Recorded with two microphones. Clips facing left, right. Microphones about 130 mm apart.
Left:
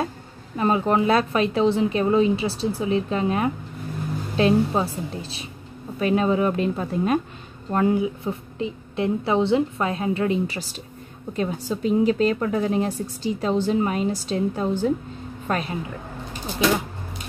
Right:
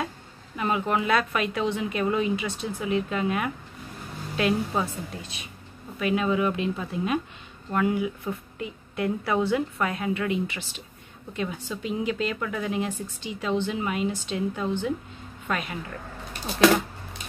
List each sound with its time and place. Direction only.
0.6 s a woman's voice: 35° left (ahead or behind)
7.7 s a woman's voice: 30° left (ahead or behind)